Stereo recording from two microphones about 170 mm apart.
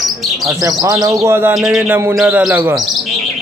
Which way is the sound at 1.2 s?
15° right (ahead or behind).